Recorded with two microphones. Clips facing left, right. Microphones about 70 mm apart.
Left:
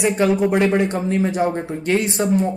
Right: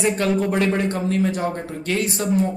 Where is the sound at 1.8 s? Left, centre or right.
Left.